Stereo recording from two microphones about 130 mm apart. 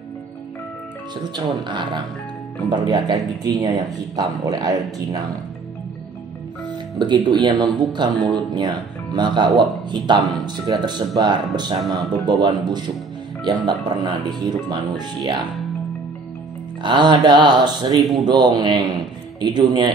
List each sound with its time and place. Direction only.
1.3 s speech: 35° right (ahead or behind)
7.0 s speech: 35° right (ahead or behind)
16.8 s speech: 35° right (ahead or behind)